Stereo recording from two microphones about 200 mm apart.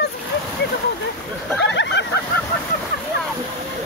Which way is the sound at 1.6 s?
60° left (ahead or behind).